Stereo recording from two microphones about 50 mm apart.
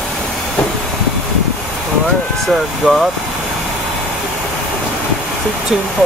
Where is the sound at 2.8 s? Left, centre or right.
Centre.